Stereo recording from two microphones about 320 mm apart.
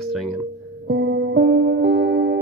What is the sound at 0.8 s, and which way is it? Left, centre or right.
Music, right.